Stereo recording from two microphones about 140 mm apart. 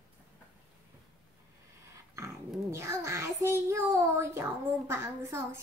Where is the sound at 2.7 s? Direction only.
20° right (ahead or behind).